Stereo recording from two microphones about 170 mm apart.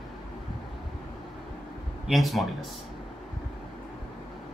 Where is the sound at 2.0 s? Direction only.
Centre (ahead or behind).